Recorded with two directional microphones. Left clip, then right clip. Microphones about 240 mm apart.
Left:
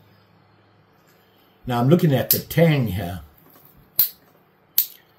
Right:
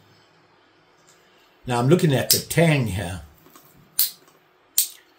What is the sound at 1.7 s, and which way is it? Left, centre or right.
Speech, centre.